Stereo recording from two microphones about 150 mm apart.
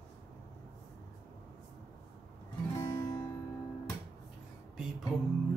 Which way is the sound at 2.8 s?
25° left (ahead or behind).